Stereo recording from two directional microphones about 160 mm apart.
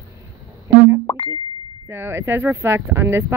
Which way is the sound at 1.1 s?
30° left (ahead or behind).